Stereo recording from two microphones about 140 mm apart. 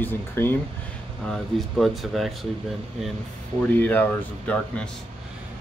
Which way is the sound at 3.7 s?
15° left (ahead or behind).